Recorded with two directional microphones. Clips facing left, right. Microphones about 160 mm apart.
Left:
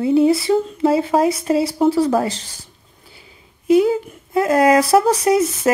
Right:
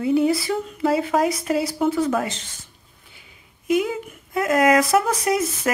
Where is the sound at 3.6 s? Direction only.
30° left (ahead or behind).